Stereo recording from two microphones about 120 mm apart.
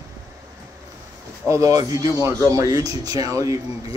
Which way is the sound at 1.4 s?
25° right (ahead or behind).